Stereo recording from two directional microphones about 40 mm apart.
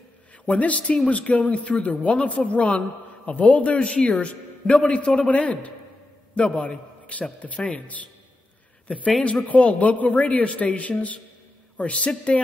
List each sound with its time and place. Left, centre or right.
0.5 s a man's voice: left
9.5 s a man's voice: left